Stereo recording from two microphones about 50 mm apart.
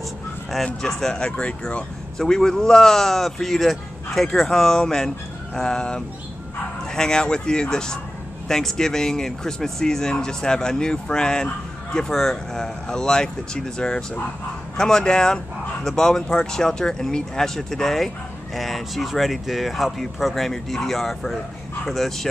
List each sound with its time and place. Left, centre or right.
0.8 s speech: centre
1.1 s speech: left
2.1 s speech: centre